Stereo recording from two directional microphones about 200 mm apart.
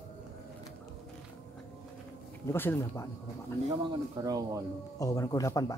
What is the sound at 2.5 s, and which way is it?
Speech, 10° left (ahead or behind).